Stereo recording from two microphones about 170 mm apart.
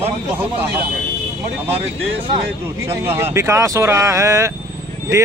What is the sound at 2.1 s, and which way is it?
Speech, 35° right (ahead or behind).